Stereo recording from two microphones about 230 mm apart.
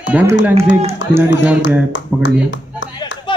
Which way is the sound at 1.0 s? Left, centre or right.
Left.